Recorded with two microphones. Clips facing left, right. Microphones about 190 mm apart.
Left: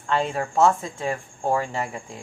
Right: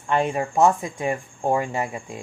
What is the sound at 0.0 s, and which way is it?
Speech, 15° right (ahead or behind).